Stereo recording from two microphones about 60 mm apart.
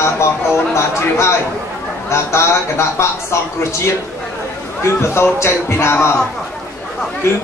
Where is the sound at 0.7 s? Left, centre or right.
Left.